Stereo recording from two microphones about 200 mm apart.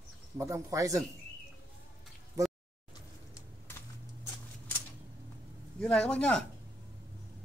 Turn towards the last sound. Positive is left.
turn(degrees=5)  # may be behind; listen again after turning